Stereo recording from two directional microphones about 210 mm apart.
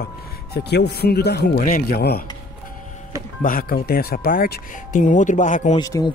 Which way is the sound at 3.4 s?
45° left (ahead or behind).